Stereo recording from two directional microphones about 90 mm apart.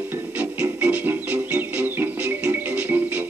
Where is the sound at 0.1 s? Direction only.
20° right (ahead or behind).